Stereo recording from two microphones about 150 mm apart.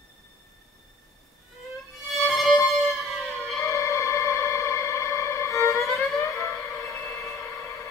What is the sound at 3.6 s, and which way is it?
Music, 20° left (ahead or behind).